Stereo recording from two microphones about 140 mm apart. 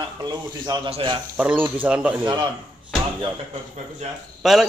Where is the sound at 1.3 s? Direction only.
10° right (ahead or behind).